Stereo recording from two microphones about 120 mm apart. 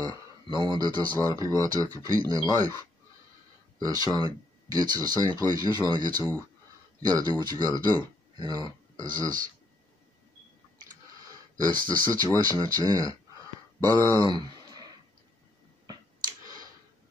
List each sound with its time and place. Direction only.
0.0 s speech: 40° right (ahead or behind)
3.8 s speech: 35° right (ahead or behind)
11.6 s speech: 35° right (ahead or behind)
15.9 s a sound: 30° right (ahead or behind)